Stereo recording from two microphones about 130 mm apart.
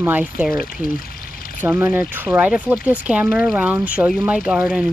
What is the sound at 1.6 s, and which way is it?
Speech, 15° right (ahead or behind).